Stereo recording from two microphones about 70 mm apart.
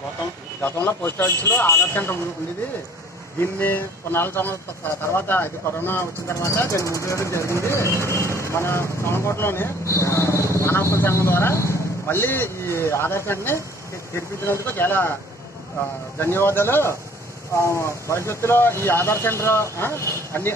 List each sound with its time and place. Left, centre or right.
0.6 s speech: left
3.3 s speech: left
16.2 s speech: left